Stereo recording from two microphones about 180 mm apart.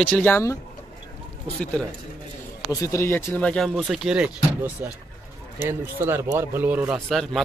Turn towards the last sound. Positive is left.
turn(degrees=0)  # may be behind; listen again after turning